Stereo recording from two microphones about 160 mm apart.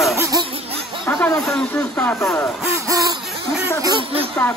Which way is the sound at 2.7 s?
20° right (ahead or behind).